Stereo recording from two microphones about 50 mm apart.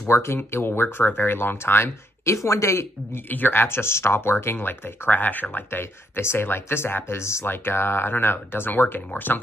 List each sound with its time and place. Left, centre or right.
0.0 s speech: left
2.3 s speech: left
3.3 s speech: left
7.4 s speech: left